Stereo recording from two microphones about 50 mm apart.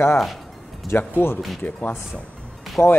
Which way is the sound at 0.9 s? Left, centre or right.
Left.